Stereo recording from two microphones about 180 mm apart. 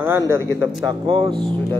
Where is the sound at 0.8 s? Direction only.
30° right (ahead or behind).